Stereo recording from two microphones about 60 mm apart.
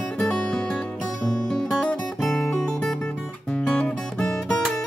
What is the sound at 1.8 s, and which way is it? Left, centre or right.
Guitar, centre.